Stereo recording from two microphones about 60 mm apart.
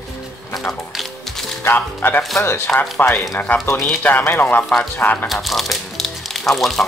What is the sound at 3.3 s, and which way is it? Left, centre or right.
Speech, left.